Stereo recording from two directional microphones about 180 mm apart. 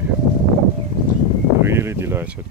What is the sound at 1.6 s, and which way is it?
Speech, 15° right (ahead or behind).